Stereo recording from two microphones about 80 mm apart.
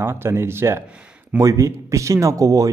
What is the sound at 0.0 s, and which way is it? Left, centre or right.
A man's voice, right.